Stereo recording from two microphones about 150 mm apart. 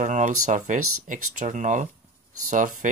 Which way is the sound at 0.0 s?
55° right (ahead or behind).